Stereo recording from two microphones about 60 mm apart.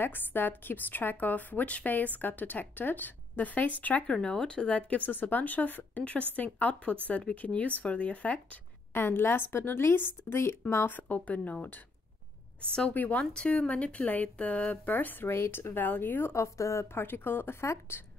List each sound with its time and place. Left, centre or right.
0.0 s speech: left
4.1 s speech: centre
8.9 s speech: left
10.9 s speech: left
12.9 s speech: left
13.2 s speech: centre; by 15.3 s left
15.3 s speech: left
16.3 s a woman's voice: left
16.9 s speech: left